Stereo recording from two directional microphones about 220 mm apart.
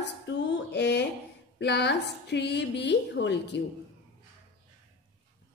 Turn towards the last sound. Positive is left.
turn(degrees=50)  # may be behind; listen again after turning